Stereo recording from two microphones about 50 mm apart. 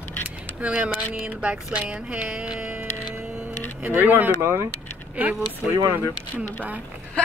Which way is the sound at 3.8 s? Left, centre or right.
Right.